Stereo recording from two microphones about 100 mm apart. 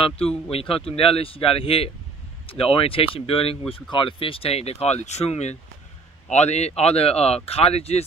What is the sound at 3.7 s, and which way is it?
Speech, 55° left (ahead or behind).